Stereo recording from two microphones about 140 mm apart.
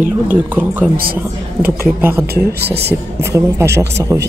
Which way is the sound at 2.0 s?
15° right (ahead or behind).